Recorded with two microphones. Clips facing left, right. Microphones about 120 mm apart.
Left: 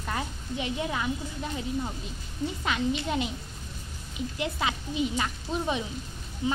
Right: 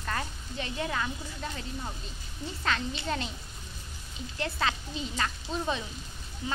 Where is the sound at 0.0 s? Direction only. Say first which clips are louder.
Left 2 dB; 15° left (ahead or behind).